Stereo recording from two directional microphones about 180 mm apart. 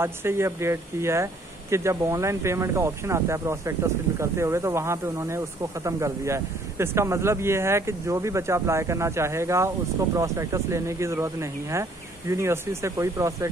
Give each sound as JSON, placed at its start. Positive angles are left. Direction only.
{"t": 0.0, "sound": "speech", "side_deg": -15}